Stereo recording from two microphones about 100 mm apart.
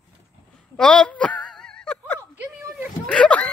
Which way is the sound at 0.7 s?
10° left (ahead or behind).